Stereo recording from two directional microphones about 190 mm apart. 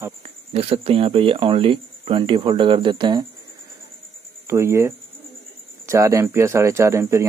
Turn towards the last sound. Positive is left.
turn(degrees=-15)  # may be behind; listen again after turning